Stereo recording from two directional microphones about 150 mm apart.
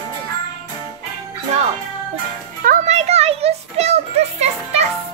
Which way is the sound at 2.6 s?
55° right (ahead or behind).